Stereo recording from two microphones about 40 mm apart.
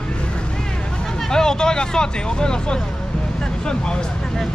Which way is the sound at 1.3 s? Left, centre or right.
Centre.